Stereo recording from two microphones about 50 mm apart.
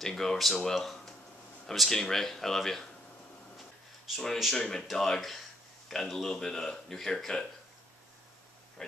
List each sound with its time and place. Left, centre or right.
0.0 s speech: centre
3.5 s a sound: centre
4.6 s speech: centre